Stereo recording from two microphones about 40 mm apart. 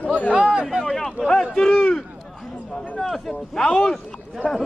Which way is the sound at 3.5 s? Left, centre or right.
Centre.